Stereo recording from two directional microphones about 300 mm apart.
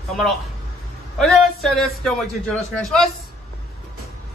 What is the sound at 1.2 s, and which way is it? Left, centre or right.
A man's voice, centre.